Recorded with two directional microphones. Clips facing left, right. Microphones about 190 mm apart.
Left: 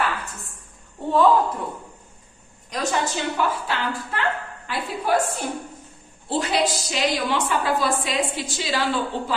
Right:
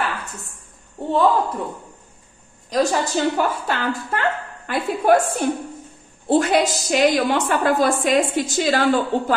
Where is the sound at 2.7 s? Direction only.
40° right (ahead or behind).